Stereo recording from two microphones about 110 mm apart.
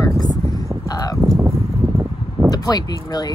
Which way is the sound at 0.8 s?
35° left (ahead or behind).